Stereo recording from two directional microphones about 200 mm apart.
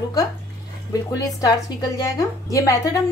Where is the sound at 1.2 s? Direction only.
20° left (ahead or behind).